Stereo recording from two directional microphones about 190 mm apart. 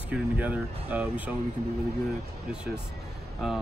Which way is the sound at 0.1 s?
10° right (ahead or behind).